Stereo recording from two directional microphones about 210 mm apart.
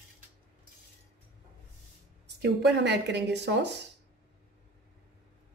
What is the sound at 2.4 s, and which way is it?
Speech, 55° right (ahead or behind).